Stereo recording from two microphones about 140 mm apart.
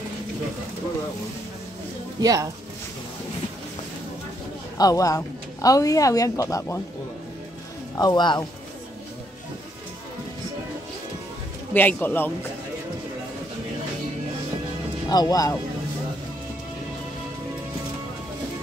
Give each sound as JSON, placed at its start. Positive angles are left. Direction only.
{"t": 2.1, "sound": "speech", "side_deg": -30}
{"t": 4.7, "sound": "a woman's voice", "side_deg": 25}
{"t": 8.0, "sound": "a woman's voice", "side_deg": 30}
{"t": 11.7, "sound": "speech", "side_deg": 15}
{"t": 15.0, "sound": "a woman's voice", "side_deg": 25}